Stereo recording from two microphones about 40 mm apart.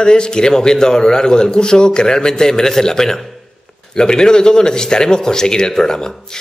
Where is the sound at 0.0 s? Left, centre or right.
Left.